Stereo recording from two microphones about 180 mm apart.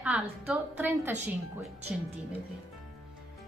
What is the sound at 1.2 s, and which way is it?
Speech, 35° right (ahead or behind).